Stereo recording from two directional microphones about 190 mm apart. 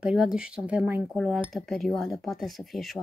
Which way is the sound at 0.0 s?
5° right (ahead or behind).